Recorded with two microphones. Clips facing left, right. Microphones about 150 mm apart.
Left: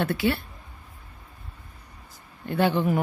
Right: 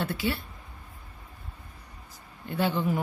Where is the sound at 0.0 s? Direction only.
60° left (ahead or behind).